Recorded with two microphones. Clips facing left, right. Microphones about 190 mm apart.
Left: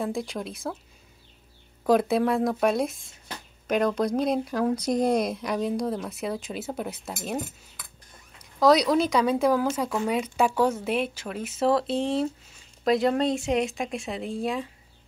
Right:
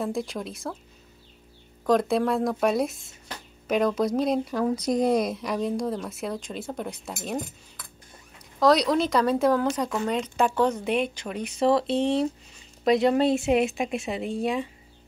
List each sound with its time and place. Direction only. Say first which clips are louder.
0.0 s speech: right 1 dB; centre (ahead or behind)
1.9 s speech: left 1 dB; 5° left (ahead or behind)
8.5 s speech: left 1 dB; centre (ahead or behind)